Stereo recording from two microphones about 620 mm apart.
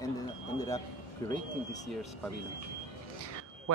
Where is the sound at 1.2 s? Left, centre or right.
Centre.